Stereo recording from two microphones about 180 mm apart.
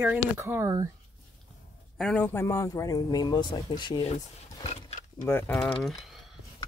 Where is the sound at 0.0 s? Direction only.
15° right (ahead or behind).